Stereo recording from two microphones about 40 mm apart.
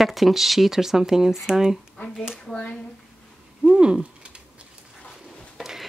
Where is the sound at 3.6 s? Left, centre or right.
Right.